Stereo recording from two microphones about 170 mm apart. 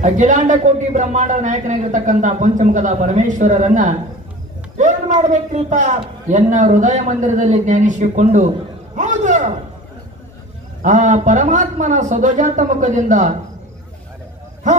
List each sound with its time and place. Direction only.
0.0 s a man's voice: 45° right (ahead or behind)
10.8 s a man's voice: 45° right (ahead or behind)